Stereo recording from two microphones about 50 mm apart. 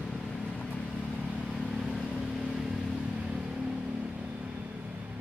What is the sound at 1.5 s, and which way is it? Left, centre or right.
Vehicle, centre.